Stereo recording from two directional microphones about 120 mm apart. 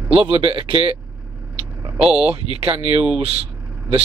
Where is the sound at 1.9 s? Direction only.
10° right (ahead or behind).